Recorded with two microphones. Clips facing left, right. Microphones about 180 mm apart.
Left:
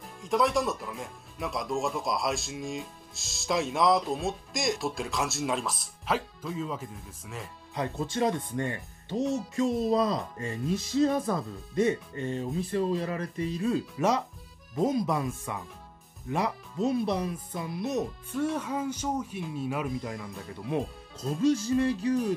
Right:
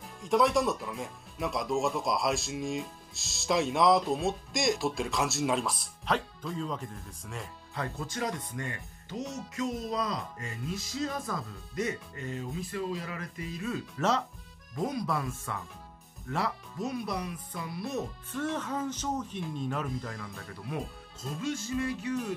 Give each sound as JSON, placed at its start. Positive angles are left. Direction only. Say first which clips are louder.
{"t": 0.2, "sound": "speech", "louder": "right 1 dB", "side_deg": 0}
{"t": 7.7, "sound": "speech", "louder": "left 5 dB", "side_deg": 20}
{"t": 13.9, "sound": "speech", "louder": "right 1 dB", "side_deg": 15}
{"t": 14.8, "sound": "speech", "louder": "left 5 dB", "side_deg": 25}
{"t": 21.2, "sound": "speech", "louder": "left 9 dB", "side_deg": 35}